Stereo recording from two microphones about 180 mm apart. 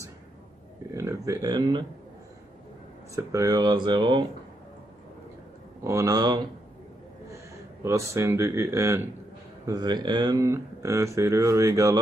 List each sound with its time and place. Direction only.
0.9 s speech: 15° right (ahead or behind)
3.2 s speech: 15° right (ahead or behind)
5.9 s speech: 20° right (ahead or behind)
7.8 s speech: 15° right (ahead or behind)